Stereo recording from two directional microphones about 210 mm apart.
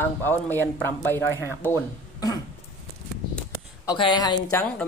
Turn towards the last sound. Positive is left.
turn(degrees=15)  # may be behind; listen again after turning